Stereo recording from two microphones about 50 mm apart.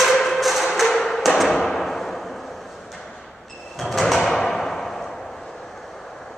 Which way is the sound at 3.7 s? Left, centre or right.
Centre.